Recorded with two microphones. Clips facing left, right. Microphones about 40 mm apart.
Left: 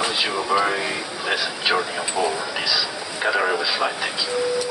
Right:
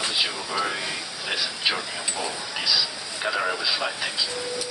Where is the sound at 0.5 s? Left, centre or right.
Left.